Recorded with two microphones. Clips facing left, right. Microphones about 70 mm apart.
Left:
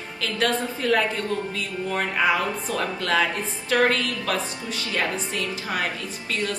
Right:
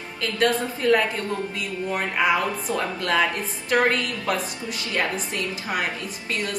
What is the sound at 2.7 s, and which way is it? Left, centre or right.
A woman's voice, right.